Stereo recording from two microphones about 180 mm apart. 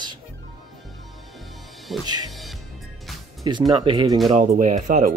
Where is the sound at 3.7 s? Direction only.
25° right (ahead or behind).